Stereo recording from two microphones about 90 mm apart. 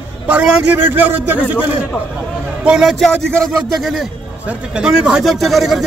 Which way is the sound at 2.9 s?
5° left (ahead or behind).